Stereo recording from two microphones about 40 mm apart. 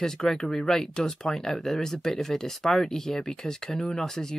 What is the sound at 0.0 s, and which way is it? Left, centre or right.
Speech, centre.